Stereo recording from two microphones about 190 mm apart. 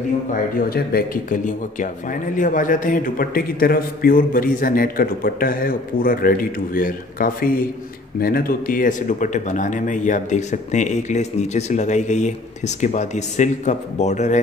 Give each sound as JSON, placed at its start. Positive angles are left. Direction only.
{"t": 0.3, "sound": "speech", "side_deg": 50}